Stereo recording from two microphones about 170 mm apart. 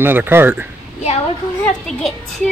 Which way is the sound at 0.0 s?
15° right (ahead or behind).